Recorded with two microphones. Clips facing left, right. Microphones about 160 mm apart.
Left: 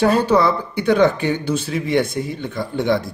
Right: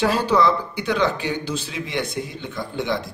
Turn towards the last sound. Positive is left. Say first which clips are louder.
# left 6 dB
turn(degrees=55)  # may be behind; listen again after turning